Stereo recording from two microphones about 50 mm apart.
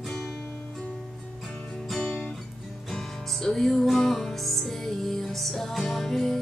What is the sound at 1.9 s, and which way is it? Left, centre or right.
Music, left.